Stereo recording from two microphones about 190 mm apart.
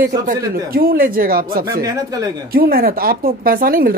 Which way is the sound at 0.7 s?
50° right (ahead or behind).